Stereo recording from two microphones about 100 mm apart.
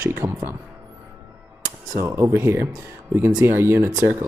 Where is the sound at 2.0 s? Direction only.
30° right (ahead or behind).